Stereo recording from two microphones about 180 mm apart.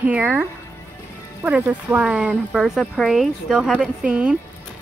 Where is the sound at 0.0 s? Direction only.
5° right (ahead or behind).